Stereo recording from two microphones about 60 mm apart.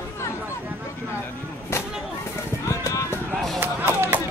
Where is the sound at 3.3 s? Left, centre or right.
Centre.